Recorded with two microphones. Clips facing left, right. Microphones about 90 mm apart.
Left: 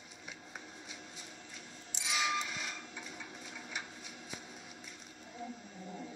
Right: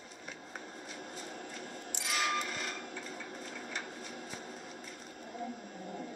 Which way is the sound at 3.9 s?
50° right (ahead or behind).